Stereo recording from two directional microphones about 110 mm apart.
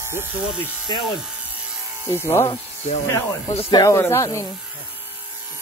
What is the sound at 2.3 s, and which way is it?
Speech, 25° left (ahead or behind).